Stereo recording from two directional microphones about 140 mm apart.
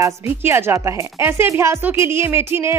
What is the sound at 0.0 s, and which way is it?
Speech, 15° right (ahead or behind).